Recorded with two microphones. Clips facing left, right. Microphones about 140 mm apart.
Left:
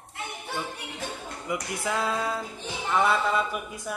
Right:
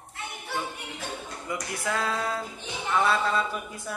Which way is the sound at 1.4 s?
15° left (ahead or behind).